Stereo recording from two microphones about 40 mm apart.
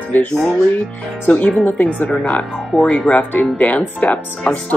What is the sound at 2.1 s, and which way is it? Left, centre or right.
Speech, left.